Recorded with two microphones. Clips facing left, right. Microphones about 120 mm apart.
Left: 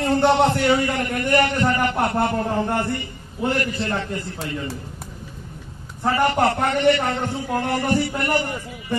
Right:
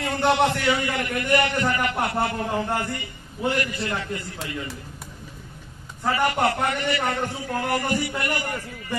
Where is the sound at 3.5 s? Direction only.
30° left (ahead or behind).